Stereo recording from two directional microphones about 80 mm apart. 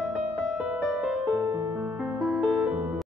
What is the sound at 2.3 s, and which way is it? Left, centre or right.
Music, centre.